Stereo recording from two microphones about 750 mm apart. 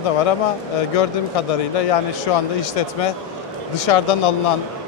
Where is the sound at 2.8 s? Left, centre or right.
Left.